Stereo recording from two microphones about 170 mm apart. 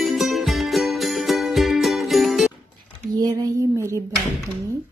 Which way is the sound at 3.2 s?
20° right (ahead or behind).